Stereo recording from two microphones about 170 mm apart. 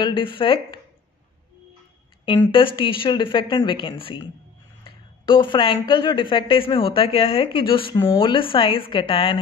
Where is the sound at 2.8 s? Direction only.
30° left (ahead or behind).